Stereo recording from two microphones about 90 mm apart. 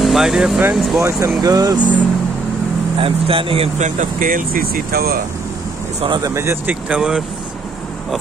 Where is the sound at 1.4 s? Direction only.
45° right (ahead or behind).